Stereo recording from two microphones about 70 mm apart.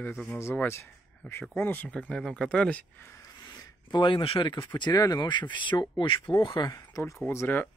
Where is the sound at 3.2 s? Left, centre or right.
Left.